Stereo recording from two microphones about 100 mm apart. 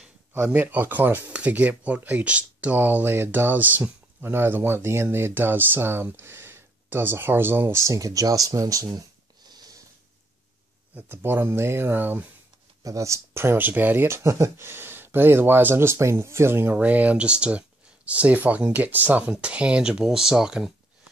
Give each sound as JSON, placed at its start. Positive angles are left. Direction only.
{"t": 0.3, "sound": "speech", "side_deg": -15}
{"t": 11.0, "sound": "speech", "side_deg": -20}
{"t": 12.8, "sound": "speech", "side_deg": -30}